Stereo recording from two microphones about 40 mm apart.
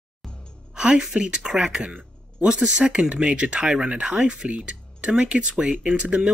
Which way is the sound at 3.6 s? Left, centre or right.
Centre.